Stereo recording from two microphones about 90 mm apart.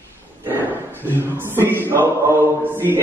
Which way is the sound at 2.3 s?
25° right (ahead or behind).